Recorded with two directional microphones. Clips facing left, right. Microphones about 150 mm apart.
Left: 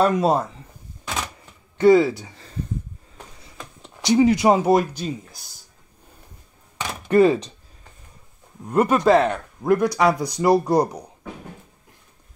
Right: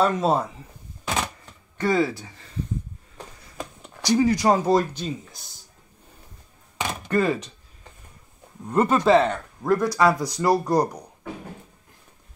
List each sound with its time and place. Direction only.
0.0 s speech: centre (ahead or behind)
1.8 s speech: 15° left (ahead or behind)
4.0 s speech: 20° left (ahead or behind)
4.9 s speech: 5° left (ahead or behind)
7.1 s speech: 15° left (ahead or behind)
8.6 s speech: 10° left (ahead or behind)